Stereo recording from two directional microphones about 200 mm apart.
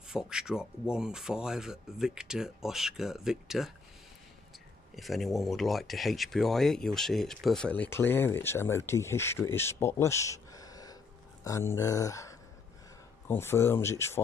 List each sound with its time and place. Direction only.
0.1 s speech: 5° right (ahead or behind)
4.9 s speech: centre (ahead or behind)